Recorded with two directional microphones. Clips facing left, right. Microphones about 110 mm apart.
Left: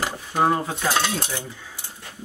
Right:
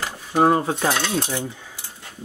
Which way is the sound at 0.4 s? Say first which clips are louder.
Right 4 dB; 40° right (ahead or behind).